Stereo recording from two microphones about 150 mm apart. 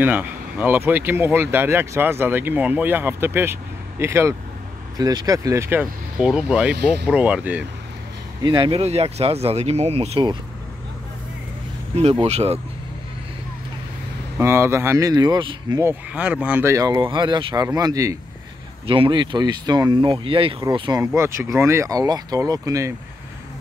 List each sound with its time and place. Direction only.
0.0 s speech: 10° right (ahead or behind)
6.1 s speech: 5° right (ahead or behind)
8.4 s speech: 30° right (ahead or behind)
11.9 s speech: 45° right (ahead or behind)
14.4 s speech: 15° right (ahead or behind)
15.8 s speech: 10° right (ahead or behind)
16.7 s speech: 20° right (ahead or behind)
18.9 s speech: 35° right (ahead or behind)
21.2 s speech: 20° right (ahead or behind)